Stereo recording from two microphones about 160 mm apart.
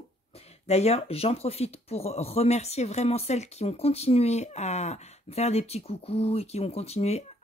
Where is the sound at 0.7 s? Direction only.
40° left (ahead or behind).